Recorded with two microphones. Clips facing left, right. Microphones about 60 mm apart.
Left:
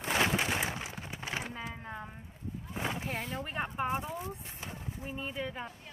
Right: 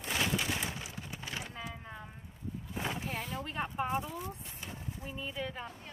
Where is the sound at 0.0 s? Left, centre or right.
Left.